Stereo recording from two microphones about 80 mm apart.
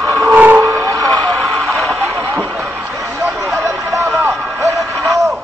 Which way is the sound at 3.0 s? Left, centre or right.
Right.